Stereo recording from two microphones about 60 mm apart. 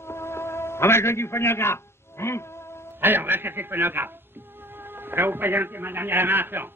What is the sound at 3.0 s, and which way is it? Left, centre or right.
A man's voice, right.